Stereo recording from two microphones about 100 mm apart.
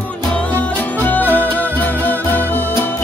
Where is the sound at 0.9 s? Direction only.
15° left (ahead or behind).